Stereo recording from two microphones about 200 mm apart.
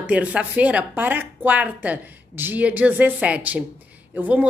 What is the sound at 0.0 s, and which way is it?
Speech, 5° right (ahead or behind).